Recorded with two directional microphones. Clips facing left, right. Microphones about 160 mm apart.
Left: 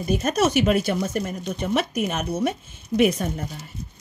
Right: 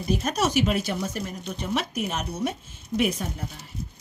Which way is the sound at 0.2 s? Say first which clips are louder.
Left 4 dB; 55° left (ahead or behind).